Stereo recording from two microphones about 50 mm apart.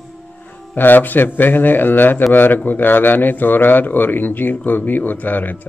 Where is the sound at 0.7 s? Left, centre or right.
Left.